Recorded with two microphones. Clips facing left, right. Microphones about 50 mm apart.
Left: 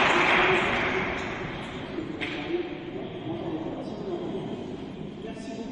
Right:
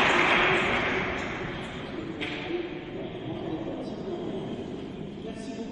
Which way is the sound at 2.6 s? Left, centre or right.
Left.